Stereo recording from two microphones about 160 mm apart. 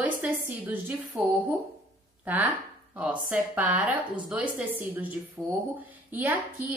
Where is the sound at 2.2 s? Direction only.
10° right (ahead or behind).